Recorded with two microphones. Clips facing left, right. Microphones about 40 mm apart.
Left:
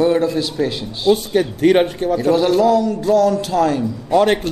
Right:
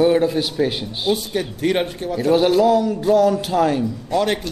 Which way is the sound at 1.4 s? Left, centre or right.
Left.